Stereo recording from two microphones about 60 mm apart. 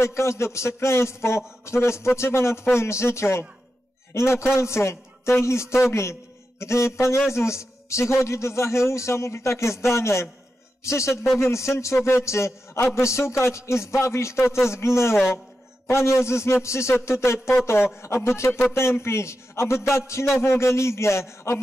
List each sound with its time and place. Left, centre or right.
0.0 s a man's voice: left